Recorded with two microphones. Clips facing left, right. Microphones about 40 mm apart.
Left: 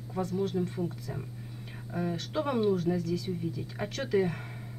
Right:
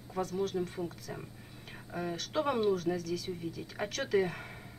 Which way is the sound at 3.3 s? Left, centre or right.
Centre.